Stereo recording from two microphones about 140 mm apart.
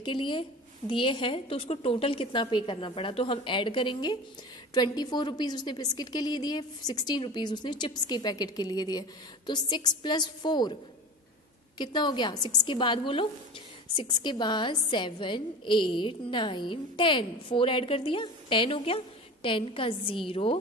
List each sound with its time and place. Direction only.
0.0 s a woman's voice: 35° left (ahead or behind)
11.8 s a woman's voice: 35° left (ahead or behind)